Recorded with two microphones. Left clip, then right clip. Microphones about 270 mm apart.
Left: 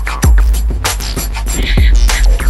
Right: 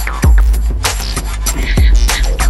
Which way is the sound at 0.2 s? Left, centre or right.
Centre.